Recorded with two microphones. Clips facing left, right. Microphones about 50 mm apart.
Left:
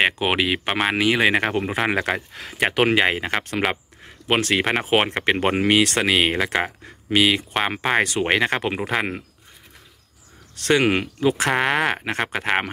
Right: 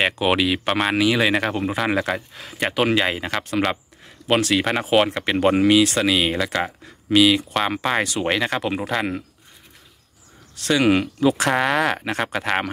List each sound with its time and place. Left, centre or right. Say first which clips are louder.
0.0 s speech: right 1 dB; left
0.7 s speech: right 1 dB; centre
0.9 s speech: left 1 dB; left
3.3 s speech: left 1 dB; centre
4.0 s a sound: right 2 dB; left
4.7 s speech: right 2 dB; left
5.8 s speech: right 1 dB; left
6.4 s speech: left 1 dB; left
8.0 s speech: left 2 dB; left
10.5 s speech: left 1 dB; left
10.9 s speech: right 3 dB; left